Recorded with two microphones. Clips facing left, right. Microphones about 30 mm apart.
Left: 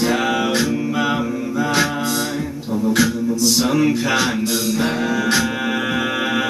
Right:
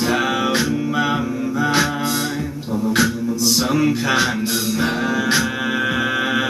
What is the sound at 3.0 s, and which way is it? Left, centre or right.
Music, centre.